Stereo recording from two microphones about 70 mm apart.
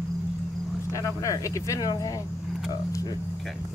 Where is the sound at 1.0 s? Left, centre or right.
Left.